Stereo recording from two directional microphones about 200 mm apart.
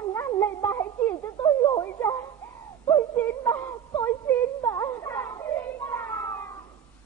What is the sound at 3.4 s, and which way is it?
Wail, 15° left (ahead or behind).